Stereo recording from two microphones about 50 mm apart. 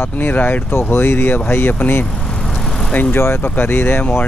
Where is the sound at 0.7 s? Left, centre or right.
Left.